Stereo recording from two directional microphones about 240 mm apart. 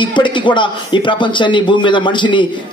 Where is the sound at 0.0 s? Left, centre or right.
Centre.